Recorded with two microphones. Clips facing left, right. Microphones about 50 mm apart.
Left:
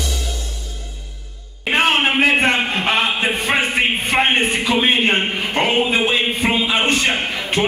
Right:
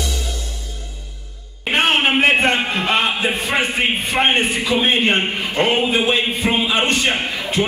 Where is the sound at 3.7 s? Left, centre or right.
Left.